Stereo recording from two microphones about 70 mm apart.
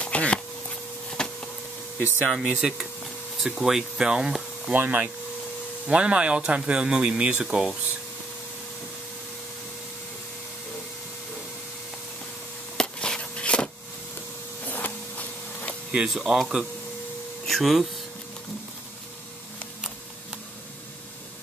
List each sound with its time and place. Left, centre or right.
0.0 s a sound: centre
2.2 s speech: centre
4.7 s speech: right
12.7 s a sound: centre
14.7 s printer: left
16.1 s speech: centre